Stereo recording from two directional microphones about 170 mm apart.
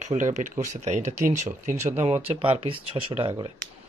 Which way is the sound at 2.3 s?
35° right (ahead or behind).